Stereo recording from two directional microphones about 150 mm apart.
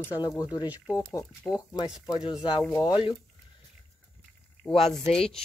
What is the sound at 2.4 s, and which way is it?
Speech, 30° left (ahead or behind).